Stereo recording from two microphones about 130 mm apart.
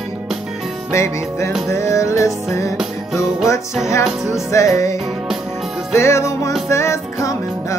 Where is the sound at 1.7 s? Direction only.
20° left (ahead or behind).